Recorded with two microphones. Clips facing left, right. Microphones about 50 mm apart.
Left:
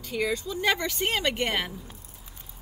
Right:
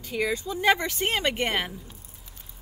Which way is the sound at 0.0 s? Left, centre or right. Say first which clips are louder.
Right 1 dB; centre.